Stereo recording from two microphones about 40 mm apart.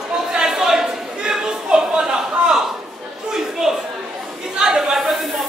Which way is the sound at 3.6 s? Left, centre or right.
Centre.